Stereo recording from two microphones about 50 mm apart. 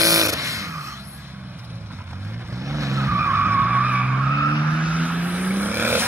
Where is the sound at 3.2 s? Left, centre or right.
Right.